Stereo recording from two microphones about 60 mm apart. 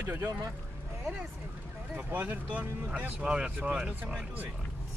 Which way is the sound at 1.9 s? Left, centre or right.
Right.